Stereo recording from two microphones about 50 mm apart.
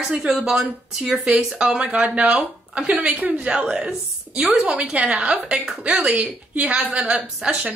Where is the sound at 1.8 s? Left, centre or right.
Right.